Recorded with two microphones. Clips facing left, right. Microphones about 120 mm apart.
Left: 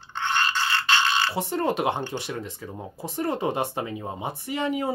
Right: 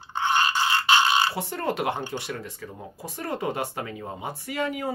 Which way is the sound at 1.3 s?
20° left (ahead or behind).